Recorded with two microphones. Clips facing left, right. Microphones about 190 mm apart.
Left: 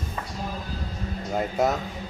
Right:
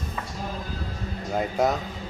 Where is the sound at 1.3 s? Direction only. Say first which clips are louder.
Even; centre (ahead or behind).